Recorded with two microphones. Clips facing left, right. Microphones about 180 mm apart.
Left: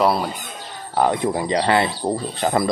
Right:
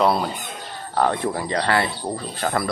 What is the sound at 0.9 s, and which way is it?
Speech, 15° left (ahead or behind).